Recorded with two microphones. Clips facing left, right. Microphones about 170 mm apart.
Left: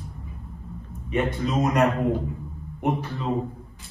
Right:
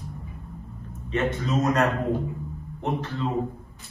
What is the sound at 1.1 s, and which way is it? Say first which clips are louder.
Speech: left 1 dB; 15° left (ahead or behind).